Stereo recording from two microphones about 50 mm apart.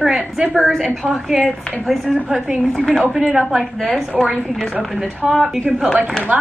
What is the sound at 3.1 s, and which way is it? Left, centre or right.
Speech, centre.